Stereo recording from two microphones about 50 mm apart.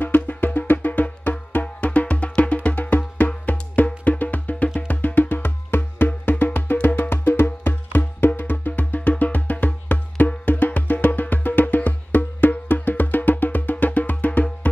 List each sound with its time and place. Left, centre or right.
0.0 s music: left